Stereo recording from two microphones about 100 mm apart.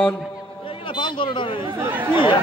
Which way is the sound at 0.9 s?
55° left (ahead or behind).